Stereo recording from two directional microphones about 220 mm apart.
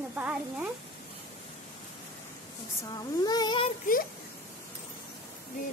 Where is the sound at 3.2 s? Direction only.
20° left (ahead or behind).